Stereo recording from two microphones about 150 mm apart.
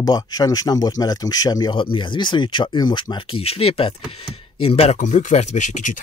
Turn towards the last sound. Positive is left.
turn(degrees=55)  # may be behind; listen again after turning